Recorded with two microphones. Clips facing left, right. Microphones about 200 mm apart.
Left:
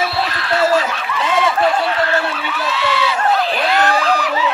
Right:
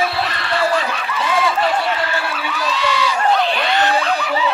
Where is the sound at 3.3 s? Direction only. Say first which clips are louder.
Left 1 dB; centre (ahead or behind).